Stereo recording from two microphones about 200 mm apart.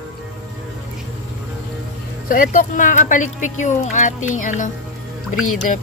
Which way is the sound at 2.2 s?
45° left (ahead or behind).